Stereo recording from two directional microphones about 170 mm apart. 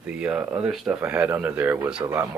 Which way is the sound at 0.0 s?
5° right (ahead or behind).